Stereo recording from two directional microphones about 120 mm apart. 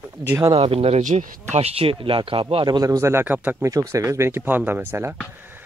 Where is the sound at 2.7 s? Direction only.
30° right (ahead or behind).